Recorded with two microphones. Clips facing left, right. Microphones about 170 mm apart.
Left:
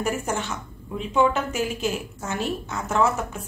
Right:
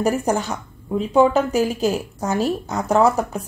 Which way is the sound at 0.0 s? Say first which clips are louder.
Right 7 dB; 35° right (ahead or behind).